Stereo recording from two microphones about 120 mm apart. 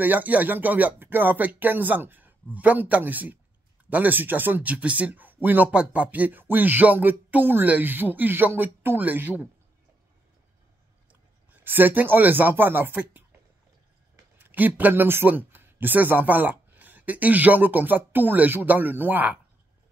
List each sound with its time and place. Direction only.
0.0 s speech: 15° right (ahead or behind)
11.1 s speech: 15° right (ahead or behind)